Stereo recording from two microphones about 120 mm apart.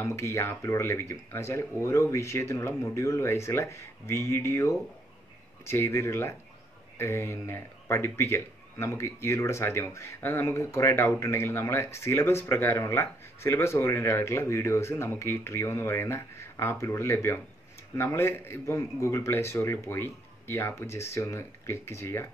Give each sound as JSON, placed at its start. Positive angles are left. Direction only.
{"t": 0.0, "sound": "speech", "side_deg": 20}